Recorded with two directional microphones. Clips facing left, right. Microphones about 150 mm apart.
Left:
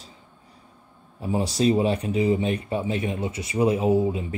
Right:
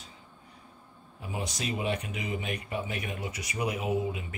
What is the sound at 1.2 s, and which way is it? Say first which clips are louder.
Speech: left 13 dB; 30° left (ahead or behind).